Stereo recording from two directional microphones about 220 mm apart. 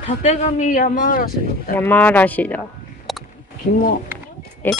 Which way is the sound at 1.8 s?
10° left (ahead or behind).